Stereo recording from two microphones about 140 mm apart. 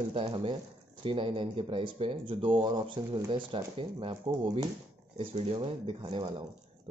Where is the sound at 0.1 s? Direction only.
40° right (ahead or behind).